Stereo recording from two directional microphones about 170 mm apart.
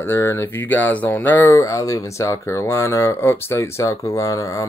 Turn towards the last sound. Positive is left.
turn(degrees=20)  # may be behind; listen again after turning